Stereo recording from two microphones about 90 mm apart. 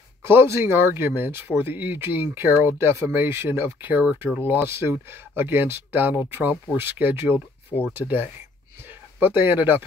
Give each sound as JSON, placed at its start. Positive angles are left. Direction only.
{"t": 0.2, "sound": "speech", "side_deg": -25}
{"t": 9.2, "sound": "speech", "side_deg": -20}